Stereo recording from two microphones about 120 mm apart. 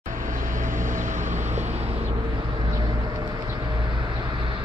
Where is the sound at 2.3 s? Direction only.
40° right (ahead or behind).